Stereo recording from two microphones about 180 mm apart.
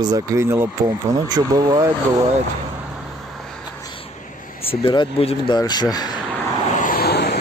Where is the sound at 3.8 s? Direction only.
30° left (ahead or behind).